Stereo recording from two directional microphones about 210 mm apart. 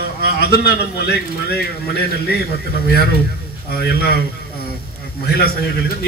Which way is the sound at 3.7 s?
50° left (ahead or behind).